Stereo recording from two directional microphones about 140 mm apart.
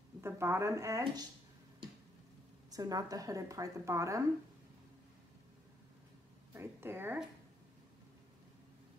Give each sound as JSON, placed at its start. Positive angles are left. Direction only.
{"t": 0.2, "sound": "a woman's voice", "side_deg": -20}
{"t": 2.7, "sound": "a woman's voice", "side_deg": -25}
{"t": 6.5, "sound": "speech", "side_deg": -15}